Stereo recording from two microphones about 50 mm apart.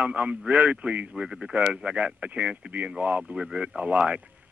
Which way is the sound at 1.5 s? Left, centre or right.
Right.